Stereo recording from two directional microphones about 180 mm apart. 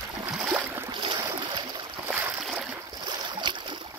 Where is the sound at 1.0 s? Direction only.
30° right (ahead or behind).